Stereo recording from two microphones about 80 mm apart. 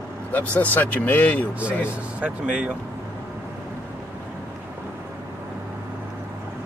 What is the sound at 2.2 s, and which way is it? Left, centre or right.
Speech, centre.